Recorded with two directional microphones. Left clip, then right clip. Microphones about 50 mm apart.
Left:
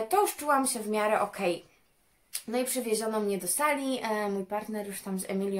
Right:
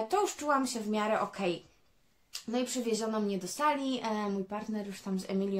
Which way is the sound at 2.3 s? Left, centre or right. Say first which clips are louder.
Left 3 dB; left.